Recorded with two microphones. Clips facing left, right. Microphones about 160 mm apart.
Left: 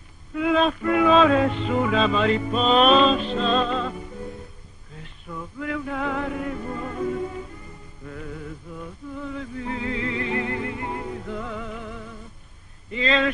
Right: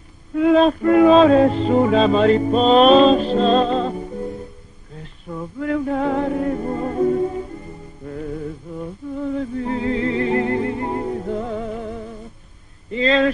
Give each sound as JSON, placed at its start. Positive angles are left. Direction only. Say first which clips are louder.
{"t": 0.3, "sound": "music", "louder": "right 7 dB", "side_deg": -40}
{"t": 5.0, "sound": "music", "louder": "right 6 dB", "side_deg": -35}
{"t": 12.9, "sound": "speech", "louder": "right 6 dB", "side_deg": -35}